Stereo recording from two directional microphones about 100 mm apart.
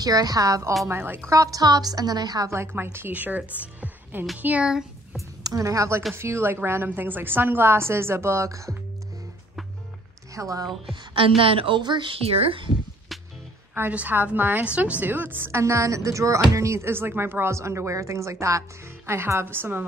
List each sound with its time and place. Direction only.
0.0 s a woman's voice: 40° right (ahead or behind)
0.8 s a woman's voice: 25° right (ahead or behind)
1.3 s a woman's voice: 35° right (ahead or behind)
2.5 s speech: 25° right (ahead or behind); by 5.2 s 5° right (ahead or behind)
5.4 s a woman's voice: 35° right (ahead or behind)
10.3 s a woman's voice: 35° right (ahead or behind)
11.1 s a woman's voice: 65° right (ahead or behind)
12.2 s speech: 85° right
13.1 s music: centre (ahead or behind)
13.7 s a woman's voice: 15° right (ahead or behind)